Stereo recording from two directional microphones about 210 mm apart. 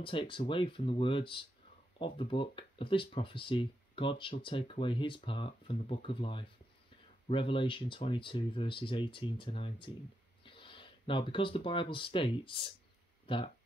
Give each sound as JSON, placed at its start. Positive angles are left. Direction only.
{"t": 0.0, "sound": "speech", "side_deg": 25}